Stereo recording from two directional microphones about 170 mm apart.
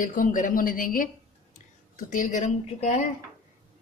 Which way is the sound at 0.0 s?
50° left (ahead or behind).